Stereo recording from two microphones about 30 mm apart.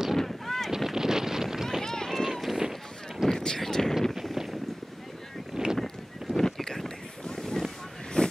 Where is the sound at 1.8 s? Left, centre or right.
Centre.